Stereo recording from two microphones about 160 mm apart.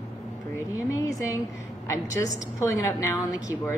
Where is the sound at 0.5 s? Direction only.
20° left (ahead or behind).